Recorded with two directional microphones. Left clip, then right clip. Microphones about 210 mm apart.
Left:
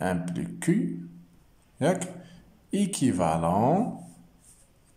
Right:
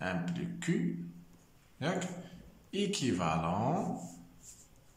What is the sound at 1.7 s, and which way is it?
A man's voice, 30° left (ahead or behind).